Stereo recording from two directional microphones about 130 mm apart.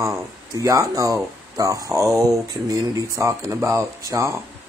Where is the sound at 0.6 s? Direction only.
25° right (ahead or behind).